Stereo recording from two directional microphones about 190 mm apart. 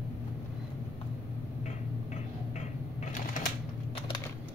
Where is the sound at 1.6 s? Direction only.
40° left (ahead or behind).